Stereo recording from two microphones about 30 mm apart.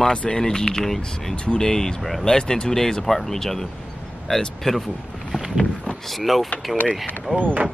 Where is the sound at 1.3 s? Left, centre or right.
Left.